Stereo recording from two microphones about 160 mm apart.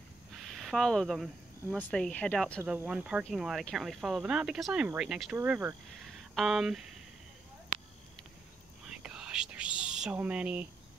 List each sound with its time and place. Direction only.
0.4 s a sound: centre (ahead or behind)
1.9 s speech: 5° left (ahead or behind)
2.6 s speech: 10° right (ahead or behind)
5.4 s speech: 20° right (ahead or behind)
6.3 s speech: centre (ahead or behind)
8.9 s whispering: 5° right (ahead or behind)